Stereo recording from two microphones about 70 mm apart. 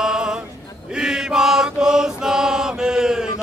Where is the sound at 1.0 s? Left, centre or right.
Centre.